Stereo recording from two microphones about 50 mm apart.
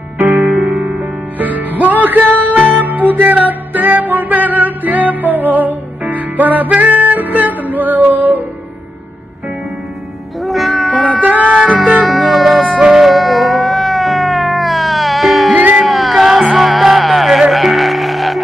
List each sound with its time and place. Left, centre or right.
0.5 s music: centre
1.4 s music: right
10.4 s cat: centre
11.1 s a sound: right
11.6 s music: centre
12.1 s music: centre
12.8 s a sound: centre
16.5 s music: centre